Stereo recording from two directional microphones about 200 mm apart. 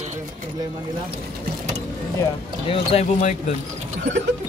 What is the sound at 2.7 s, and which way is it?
Speech, 30° left (ahead or behind).